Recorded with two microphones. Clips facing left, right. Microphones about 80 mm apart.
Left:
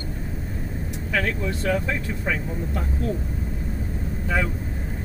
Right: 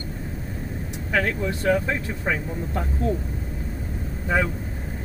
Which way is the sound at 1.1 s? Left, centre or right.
Right.